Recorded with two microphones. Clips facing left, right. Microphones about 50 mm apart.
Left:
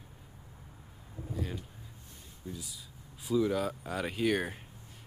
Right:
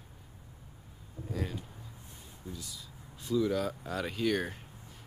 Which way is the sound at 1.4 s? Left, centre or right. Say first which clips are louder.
Right 1 dB; right.